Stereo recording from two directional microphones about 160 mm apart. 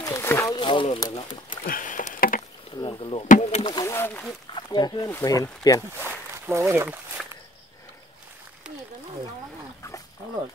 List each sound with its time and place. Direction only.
0.0 s a sound: 15° left (ahead or behind)
0.6 s a sound: 30° left (ahead or behind)
0.9 s speech: 25° left (ahead or behind)
1.6 s a sound: 60° left (ahead or behind)
2.8 s chop: 35° left (ahead or behind)
3.3 s rowboat: 45° left (ahead or behind)
3.8 s speech: 15° left (ahead or behind)
4.6 s speech: 25° left (ahead or behind)
5.9 s speech: 15° right (ahead or behind)